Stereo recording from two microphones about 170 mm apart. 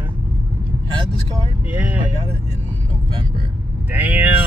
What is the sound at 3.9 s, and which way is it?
Speech, 10° right (ahead or behind).